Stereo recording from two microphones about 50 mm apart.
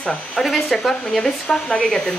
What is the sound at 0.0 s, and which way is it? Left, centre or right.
Speech, left.